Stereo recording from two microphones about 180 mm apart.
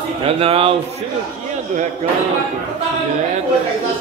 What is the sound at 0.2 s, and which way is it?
Speech, 30° right (ahead or behind).